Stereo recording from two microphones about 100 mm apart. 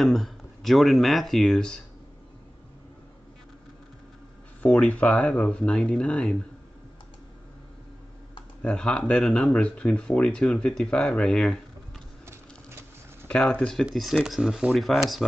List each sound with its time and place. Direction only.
0.0 s speech: centre (ahead or behind)
4.6 s speech: 10° left (ahead or behind)
8.6 s speech: 10° left (ahead or behind)
12.3 s a sound: 25° right (ahead or behind)
13.3 s speech: 10° left (ahead or behind)